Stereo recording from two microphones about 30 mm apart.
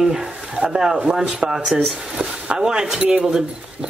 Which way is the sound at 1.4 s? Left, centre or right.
Right.